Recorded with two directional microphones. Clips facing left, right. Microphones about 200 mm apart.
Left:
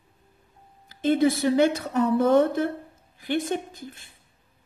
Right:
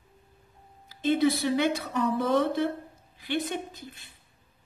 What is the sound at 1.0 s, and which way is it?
Speech, 50° left (ahead or behind).